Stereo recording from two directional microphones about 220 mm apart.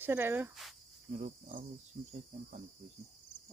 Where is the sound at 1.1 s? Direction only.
35° right (ahead or behind).